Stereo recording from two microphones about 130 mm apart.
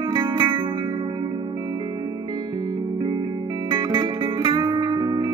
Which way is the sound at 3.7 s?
40° right (ahead or behind).